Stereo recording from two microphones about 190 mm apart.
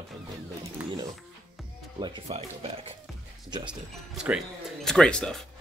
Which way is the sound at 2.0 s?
30° right (ahead or behind).